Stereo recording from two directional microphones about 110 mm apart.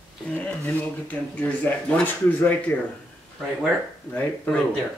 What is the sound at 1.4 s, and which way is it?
Speech, 15° left (ahead or behind).